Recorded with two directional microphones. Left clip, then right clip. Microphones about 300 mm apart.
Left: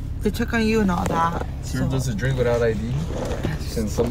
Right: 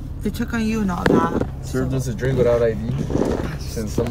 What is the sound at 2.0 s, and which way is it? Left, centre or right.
Speech, centre.